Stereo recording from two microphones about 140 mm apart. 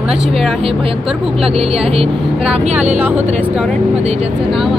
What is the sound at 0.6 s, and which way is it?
Speech, 40° right (ahead or behind).